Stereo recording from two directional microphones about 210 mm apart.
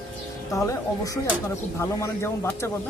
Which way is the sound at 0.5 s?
15° left (ahead or behind).